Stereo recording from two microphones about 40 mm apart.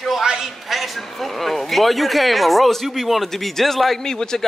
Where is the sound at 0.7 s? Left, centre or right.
Centre.